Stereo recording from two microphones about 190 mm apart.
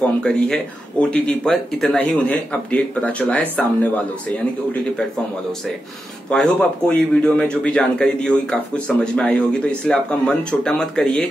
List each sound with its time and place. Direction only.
0.2 s a man's voice: 5° left (ahead or behind)
6.3 s a man's voice: 5° left (ahead or behind)